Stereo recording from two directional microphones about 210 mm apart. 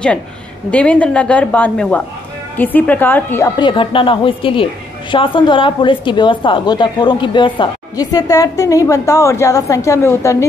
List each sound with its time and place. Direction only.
0.7 s a woman's voice: 5° left (ahead or behind)